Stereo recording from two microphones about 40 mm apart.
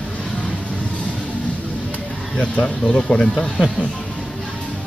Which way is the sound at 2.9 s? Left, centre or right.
Left.